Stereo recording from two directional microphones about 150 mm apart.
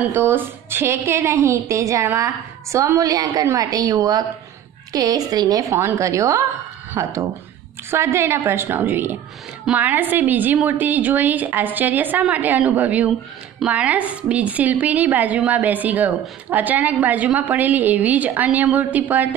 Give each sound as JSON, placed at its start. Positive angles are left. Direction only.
{"t": 0.0, "sound": "a woman's voice", "side_deg": -15}